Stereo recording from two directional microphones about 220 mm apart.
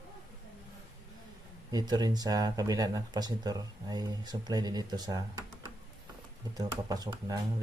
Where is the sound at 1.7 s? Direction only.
15° right (ahead or behind).